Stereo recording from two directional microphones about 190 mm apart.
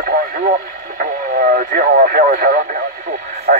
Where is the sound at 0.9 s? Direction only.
45° right (ahead or behind).